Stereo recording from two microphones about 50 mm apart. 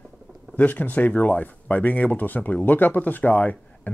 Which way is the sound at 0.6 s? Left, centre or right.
Left.